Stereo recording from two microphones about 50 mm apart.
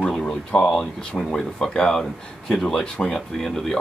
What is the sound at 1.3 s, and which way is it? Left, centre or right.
Speech, centre.